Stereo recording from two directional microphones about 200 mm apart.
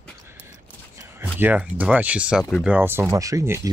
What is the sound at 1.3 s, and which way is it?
Speech, 10° right (ahead or behind).